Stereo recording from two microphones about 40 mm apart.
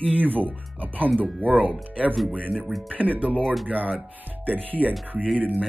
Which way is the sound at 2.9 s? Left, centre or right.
Right.